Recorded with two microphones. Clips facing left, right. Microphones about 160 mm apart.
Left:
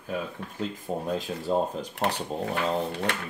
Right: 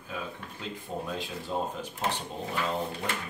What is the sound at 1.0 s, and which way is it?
Speech, 40° left (ahead or behind).